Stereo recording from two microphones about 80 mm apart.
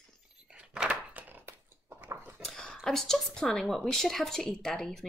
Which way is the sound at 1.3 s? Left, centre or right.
Right.